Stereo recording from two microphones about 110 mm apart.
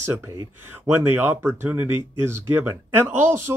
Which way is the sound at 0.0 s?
20° right (ahead or behind).